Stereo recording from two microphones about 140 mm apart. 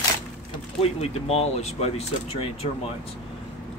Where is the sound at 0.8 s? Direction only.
45° left (ahead or behind).